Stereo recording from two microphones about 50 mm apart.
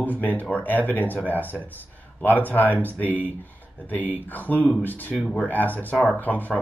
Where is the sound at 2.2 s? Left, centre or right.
Left.